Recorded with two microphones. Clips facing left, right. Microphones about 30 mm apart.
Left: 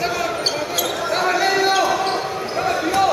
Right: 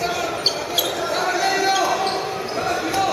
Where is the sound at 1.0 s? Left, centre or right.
Centre.